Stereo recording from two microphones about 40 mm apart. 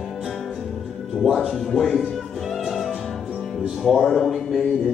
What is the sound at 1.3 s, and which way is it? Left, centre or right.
Music, centre.